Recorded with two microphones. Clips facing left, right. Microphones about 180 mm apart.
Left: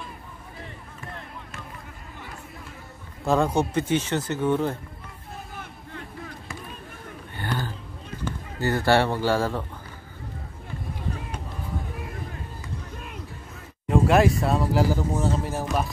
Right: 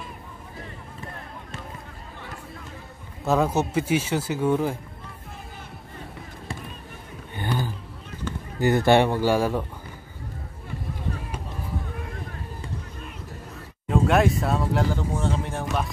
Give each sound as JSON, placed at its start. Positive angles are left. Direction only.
{"t": 3.3, "sound": "speech", "side_deg": -5}
{"t": 7.3, "sound": "a sound", "side_deg": -15}
{"t": 8.5, "sound": "speech", "side_deg": -20}
{"t": 13.8, "sound": "speech", "side_deg": 0}